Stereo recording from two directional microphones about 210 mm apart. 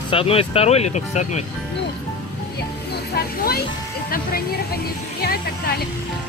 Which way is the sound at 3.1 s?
45° left (ahead or behind).